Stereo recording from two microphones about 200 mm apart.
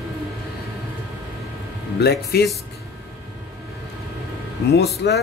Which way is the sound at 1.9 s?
55° left (ahead or behind).